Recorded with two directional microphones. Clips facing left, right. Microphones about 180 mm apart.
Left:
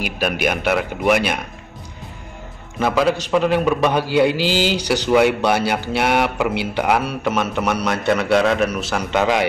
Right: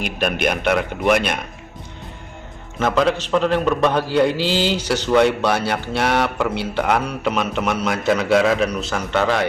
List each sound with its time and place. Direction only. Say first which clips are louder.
0.0 s speech: even; 5° left (ahead or behind)
2.8 s speech: even; 5° left (ahead or behind)